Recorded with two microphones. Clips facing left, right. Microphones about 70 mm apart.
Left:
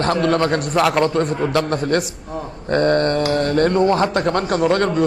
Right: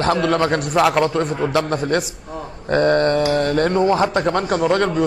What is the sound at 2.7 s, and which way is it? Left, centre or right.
A man's voice, centre.